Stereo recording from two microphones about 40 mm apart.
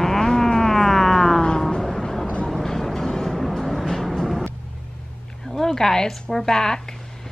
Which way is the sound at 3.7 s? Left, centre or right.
Centre.